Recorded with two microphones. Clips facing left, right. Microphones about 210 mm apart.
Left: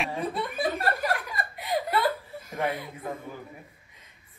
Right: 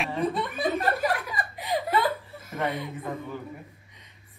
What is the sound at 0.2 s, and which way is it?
Chuckle, centre (ahead or behind).